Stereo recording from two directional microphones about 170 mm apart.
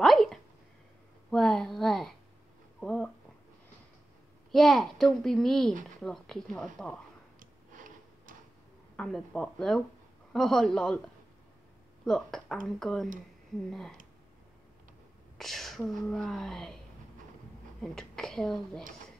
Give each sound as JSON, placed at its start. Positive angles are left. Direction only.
{"t": 0.0, "sound": "a sound", "side_deg": 0}
{"t": 4.5, "sound": "a child's voice", "side_deg": 0}
{"t": 7.3, "sound": "tick-tock", "side_deg": -50}
{"t": 8.9, "sound": "a child's voice", "side_deg": 5}
{"t": 12.0, "sound": "a child's voice", "side_deg": 0}
{"t": 15.3, "sound": "speech", "side_deg": 0}
{"t": 17.8, "sound": "a child's voice", "side_deg": 5}